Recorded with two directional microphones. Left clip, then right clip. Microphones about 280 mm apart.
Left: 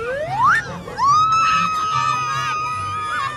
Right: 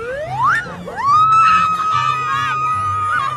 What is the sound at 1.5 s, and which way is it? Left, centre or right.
Music, centre.